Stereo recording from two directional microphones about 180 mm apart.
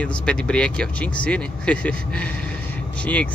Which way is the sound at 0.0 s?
5° left (ahead or behind).